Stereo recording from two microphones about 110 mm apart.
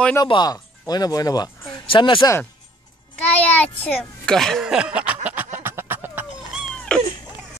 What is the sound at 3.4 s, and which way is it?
A child's voice, 10° left (ahead or behind).